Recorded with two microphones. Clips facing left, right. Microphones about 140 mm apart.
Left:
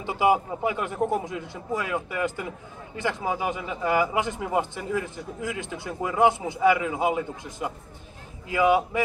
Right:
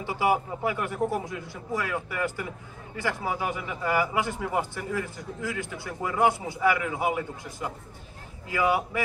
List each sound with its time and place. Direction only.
0.0 s a man's voice: 20° left (ahead or behind)